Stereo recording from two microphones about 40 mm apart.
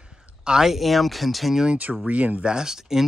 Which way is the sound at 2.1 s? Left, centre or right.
Right.